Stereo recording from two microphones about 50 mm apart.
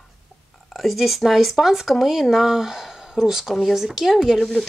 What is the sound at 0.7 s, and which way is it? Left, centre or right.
Speech, centre.